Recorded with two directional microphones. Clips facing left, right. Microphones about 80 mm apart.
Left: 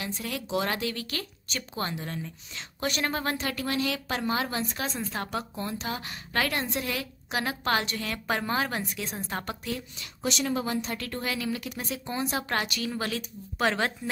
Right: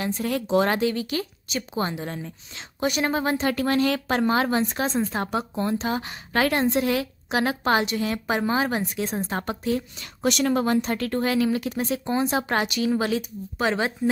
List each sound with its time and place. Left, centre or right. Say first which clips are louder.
0.0 s a woman's voice: right 8 dB; right
2.8 s a woman's voice: right 6 dB; centre
3.5 s a woman's voice: right 7 dB; right
9.0 s speech: right 7 dB; right
10.2 s speech: right 7 dB; right
13.6 s speech: right 2 dB; centre